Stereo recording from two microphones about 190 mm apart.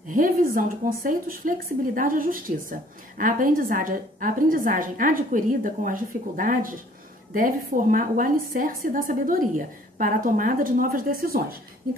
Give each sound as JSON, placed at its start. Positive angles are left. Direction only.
{"t": 0.1, "sound": "a woman's voice", "side_deg": -45}